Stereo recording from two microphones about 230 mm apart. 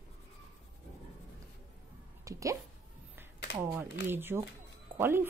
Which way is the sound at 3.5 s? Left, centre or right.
Left.